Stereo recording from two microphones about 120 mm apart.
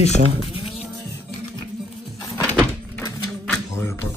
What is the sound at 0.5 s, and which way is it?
Cat, 50° left (ahead or behind).